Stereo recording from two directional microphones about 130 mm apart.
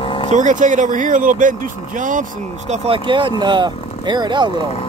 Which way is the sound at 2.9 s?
40° right (ahead or behind).